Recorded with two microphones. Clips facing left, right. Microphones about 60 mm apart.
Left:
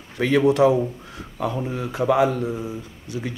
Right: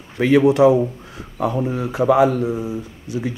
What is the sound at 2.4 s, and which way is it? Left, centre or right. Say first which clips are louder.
Speech: right 5 dB; centre.